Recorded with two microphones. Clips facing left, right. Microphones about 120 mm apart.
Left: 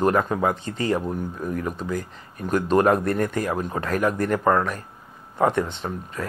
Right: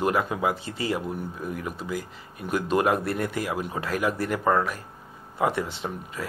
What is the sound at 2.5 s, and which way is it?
Speech, 40° left (ahead or behind).